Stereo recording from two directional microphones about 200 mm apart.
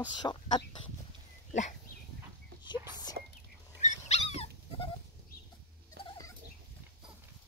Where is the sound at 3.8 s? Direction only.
35° left (ahead or behind).